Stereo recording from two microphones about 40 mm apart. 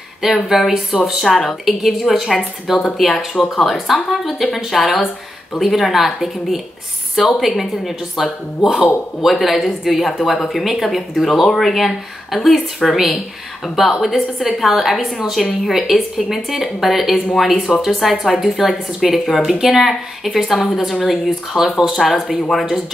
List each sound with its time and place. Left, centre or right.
0.2 s speech: centre
1.2 s speech: centre
3.4 s speech: centre
3.8 s speech: centre
17.7 s speech: centre
18.1 s speech: centre